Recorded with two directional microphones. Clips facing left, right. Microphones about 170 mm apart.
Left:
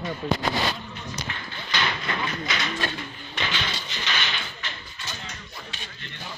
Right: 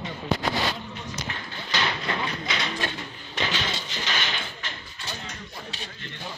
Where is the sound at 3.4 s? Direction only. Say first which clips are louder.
Right 2 dB; 35° right (ahead or behind).